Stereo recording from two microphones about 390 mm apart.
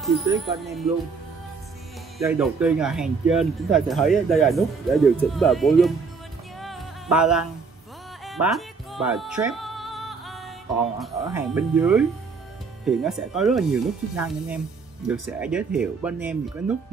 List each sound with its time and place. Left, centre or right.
0.0 s speech: centre
2.1 s speech: centre
6.6 s music: centre
11.0 s speech: centre